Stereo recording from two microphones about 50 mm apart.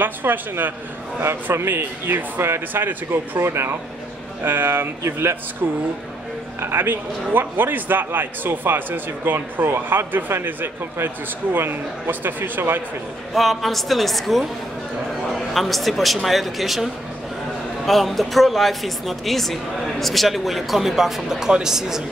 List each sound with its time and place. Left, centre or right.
0.0 s a man's voice: right
1.2 s a man's voice: right
6.6 s a man's voice: right
13.3 s speech: centre
15.5 s speech: centre